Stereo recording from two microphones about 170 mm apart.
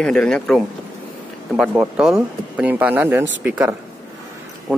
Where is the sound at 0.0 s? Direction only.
5° left (ahead or behind).